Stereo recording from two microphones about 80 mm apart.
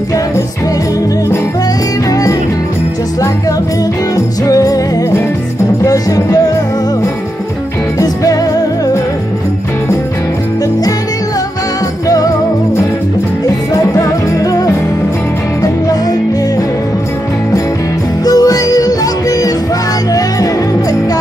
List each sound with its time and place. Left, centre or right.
4.5 s music: left
8.0 s music: left
13.9 s music: left
18.2 s music: left